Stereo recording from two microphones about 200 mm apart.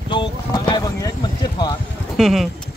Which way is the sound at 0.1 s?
25° left (ahead or behind).